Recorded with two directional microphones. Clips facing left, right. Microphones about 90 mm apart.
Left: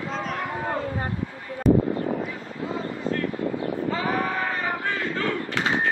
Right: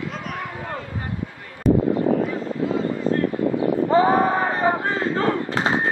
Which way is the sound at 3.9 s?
30° right (ahead or behind).